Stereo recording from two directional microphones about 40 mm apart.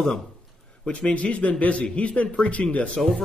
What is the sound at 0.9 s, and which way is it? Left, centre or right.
A man's voice, left.